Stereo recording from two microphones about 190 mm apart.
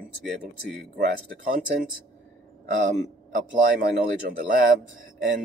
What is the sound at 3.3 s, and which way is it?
Speech, 45° right (ahead or behind).